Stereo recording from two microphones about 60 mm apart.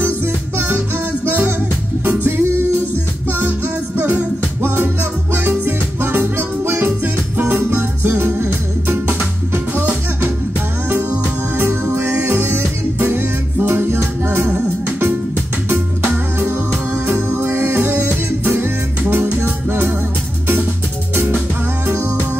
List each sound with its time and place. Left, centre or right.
0.6 s music: right
2.0 s music: right
10.9 s music: right
17.0 s music: right
21.1 s music: right